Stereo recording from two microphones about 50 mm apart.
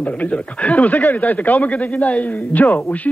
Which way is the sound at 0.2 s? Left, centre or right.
Left.